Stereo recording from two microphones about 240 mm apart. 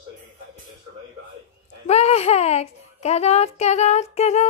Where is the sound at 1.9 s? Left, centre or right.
Left.